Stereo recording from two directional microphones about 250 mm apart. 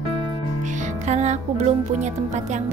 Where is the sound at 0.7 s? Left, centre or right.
Right.